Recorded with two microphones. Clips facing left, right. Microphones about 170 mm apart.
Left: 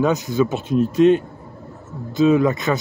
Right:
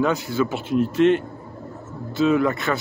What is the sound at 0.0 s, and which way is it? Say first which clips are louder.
Speech: left 3 dB; 20° left (ahead or behind).